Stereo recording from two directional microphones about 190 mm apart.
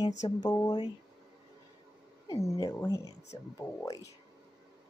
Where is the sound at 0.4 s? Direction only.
20° left (ahead or behind).